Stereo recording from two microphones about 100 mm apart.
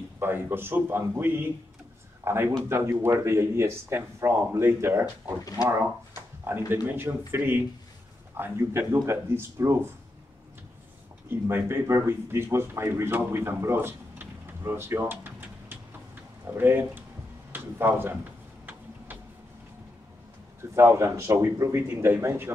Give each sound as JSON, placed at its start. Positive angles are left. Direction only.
{"t": 0.2, "sound": "speech", "side_deg": -20}
{"t": 11.2, "sound": "speech", "side_deg": -20}
{"t": 20.7, "sound": "speech", "side_deg": -25}